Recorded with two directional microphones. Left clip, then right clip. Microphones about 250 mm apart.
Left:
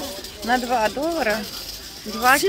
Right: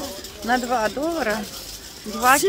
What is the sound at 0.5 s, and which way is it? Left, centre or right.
Speech, centre.